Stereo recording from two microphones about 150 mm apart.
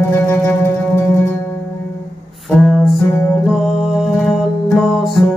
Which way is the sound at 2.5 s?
10° left (ahead or behind).